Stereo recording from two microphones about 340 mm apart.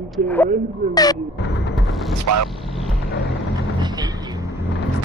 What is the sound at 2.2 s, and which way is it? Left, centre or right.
Speech, right.